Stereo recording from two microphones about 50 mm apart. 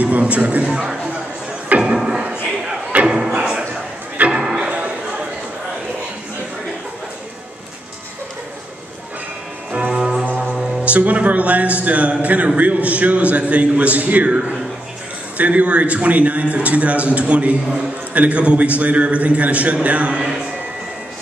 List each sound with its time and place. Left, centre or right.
0.0 s a man's voice: right
0.7 s speech: centre
1.7 s a sound: right
2.0 s a sound: centre
9.7 s music: right
9.9 s music: centre
10.2 s music: right
10.5 s a sound: centre
10.8 s a man's voice: right